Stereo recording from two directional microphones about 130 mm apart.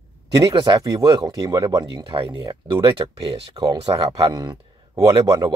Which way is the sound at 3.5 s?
30° right (ahead or behind).